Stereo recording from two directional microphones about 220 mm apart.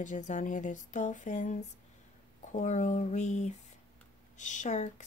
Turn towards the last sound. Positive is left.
turn(degrees=35)  # may be behind; listen again after turning